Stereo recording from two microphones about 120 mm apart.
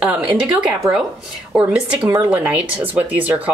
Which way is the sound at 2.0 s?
30° right (ahead or behind).